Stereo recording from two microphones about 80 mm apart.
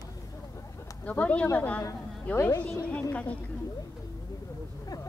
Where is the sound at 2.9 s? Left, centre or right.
Centre.